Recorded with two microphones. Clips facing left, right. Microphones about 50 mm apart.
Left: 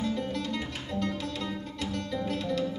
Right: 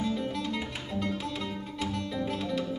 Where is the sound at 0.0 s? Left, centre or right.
Centre.